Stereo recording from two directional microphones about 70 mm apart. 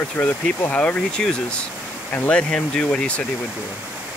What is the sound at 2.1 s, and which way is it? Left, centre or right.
Speech, left.